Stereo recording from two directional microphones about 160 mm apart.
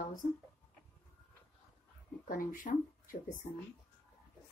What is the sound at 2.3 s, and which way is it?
Speech, 55° left (ahead or behind).